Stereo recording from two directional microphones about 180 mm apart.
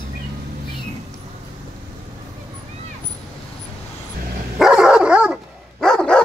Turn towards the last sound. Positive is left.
turn(degrees=5)  # may be behind; listen again after turning